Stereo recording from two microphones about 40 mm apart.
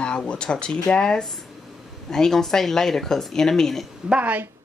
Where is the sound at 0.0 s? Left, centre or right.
Left.